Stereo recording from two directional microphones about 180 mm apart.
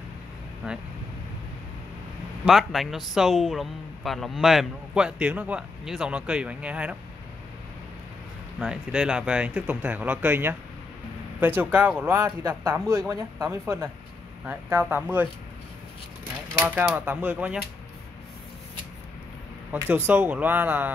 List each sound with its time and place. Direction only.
2.4 s a man's voice: centre (ahead or behind)
8.5 s a man's voice: 5° right (ahead or behind)
16.5 s speech: 5° right (ahead or behind)
19.7 s speech: 10° right (ahead or behind)